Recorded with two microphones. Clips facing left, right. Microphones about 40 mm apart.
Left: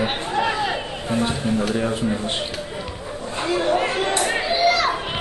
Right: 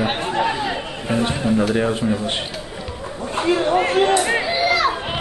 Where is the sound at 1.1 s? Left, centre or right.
Right.